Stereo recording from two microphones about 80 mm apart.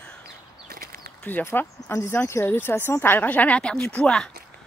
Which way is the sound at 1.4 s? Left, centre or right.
Left.